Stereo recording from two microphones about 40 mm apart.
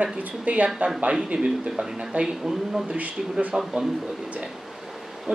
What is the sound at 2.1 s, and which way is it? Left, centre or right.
Speech, right.